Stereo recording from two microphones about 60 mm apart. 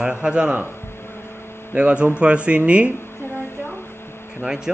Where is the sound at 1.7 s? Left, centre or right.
Right.